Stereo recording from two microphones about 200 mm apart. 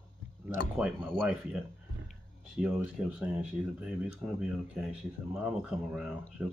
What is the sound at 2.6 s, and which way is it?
Speech, 5° right (ahead or behind).